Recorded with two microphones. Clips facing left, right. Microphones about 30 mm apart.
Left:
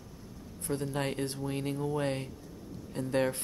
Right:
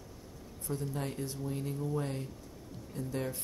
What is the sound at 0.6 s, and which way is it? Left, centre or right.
Speech, left.